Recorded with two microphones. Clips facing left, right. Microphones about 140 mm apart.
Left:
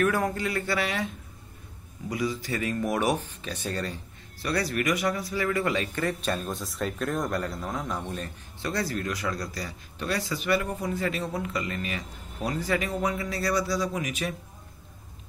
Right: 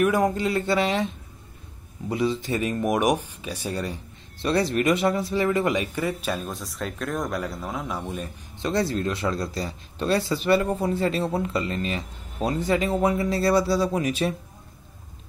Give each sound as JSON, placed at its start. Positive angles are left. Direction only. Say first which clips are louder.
{"t": 0.0, "sound": "speech", "louder": "right 4 dB", "side_deg": -20}
{"t": 4.4, "sound": "speech", "louder": "right 5 dB", "side_deg": -25}
{"t": 8.5, "sound": "speech", "louder": "right 5 dB", "side_deg": -25}